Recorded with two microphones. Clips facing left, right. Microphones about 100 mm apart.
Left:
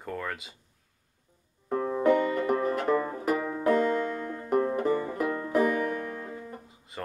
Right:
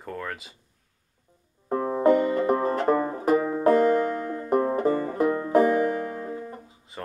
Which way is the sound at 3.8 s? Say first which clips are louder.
Right 6 dB; 45° right (ahead or behind).